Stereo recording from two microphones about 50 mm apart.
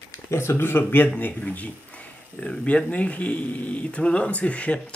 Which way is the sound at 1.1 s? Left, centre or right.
Left.